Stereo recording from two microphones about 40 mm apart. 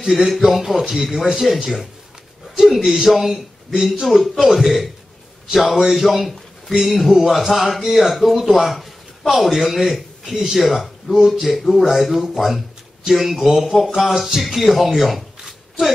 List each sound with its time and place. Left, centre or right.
0.0 s speech: centre